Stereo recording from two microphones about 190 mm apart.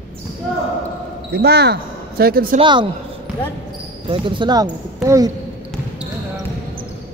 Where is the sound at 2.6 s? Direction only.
25° right (ahead or behind).